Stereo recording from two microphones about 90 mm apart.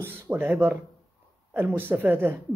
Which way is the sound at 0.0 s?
25° right (ahead or behind).